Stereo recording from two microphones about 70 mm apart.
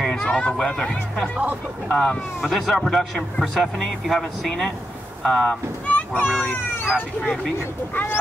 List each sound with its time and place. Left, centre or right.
0.0 s speech: centre
2.4 s a man's voice: centre
5.9 s a sound: left
6.2 s speech: centre
7.9 s speech: left